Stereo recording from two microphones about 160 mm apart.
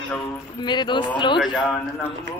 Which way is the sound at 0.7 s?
30° left (ahead or behind).